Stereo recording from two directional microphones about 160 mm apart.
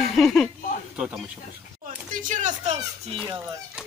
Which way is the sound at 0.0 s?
Centre (ahead or behind).